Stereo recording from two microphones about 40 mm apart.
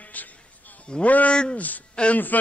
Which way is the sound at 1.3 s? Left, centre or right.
Left.